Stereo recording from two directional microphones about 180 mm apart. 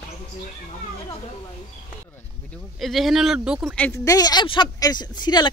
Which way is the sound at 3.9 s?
20° left (ahead or behind).